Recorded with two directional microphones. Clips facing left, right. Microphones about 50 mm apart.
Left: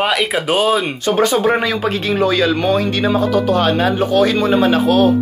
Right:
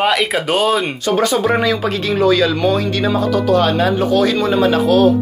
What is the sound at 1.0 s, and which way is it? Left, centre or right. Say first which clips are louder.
Speech: left 2 dB; left.